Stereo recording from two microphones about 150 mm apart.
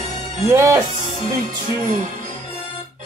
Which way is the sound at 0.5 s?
20° right (ahead or behind).